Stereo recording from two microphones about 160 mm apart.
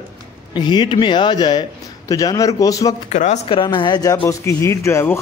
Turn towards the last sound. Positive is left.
turn(degrees=15)  # may be behind; listen again after turning